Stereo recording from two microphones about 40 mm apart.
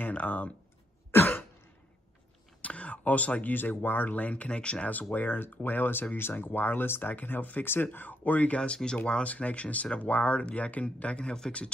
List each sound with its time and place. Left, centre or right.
0.0 s speech: left
1.1 s throat clearing: left
2.6 s a sound: left
3.5 s speech: left
5.1 s speech: left
7.6 s speech: left
8.5 s speech: centre
8.9 s speech: left